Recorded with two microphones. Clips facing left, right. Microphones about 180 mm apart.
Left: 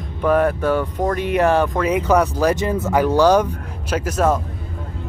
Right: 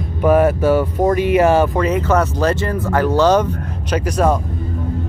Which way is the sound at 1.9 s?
10° left (ahead or behind).